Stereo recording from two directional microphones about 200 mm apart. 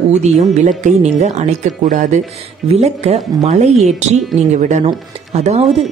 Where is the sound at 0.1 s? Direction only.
35° right (ahead or behind).